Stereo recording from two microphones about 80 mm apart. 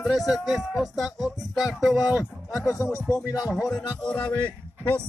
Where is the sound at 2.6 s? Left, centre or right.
Left.